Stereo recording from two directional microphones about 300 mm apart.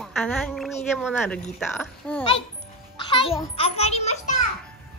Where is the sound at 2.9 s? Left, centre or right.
Centre.